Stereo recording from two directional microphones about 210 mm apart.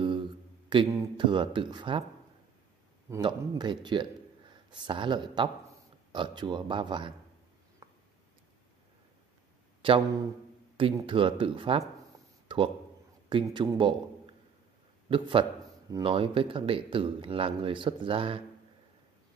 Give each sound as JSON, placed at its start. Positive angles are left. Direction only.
{"t": 0.7, "sound": "speech", "side_deg": -25}
{"t": 3.1, "sound": "speech", "side_deg": -20}
{"t": 7.8, "sound": "a sound", "side_deg": -15}
{"t": 9.8, "sound": "a sound", "side_deg": -25}
{"t": 10.8, "sound": "speech", "side_deg": -25}
{"t": 13.3, "sound": "a man's voice", "side_deg": -25}